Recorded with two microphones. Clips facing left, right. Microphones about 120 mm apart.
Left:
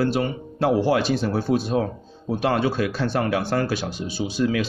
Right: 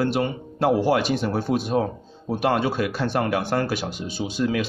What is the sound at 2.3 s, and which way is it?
A man's voice, 15° right (ahead or behind).